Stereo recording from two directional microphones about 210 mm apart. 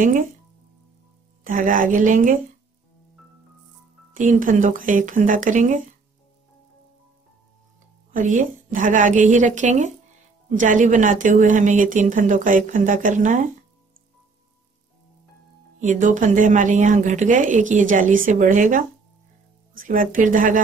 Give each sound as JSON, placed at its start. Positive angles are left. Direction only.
{"t": 1.4, "sound": "a woman's voice", "side_deg": -40}
{"t": 4.1, "sound": "a woman's voice", "side_deg": -35}
{"t": 8.1, "sound": "a woman's voice", "side_deg": -40}
{"t": 15.8, "sound": "a woman's voice", "side_deg": -40}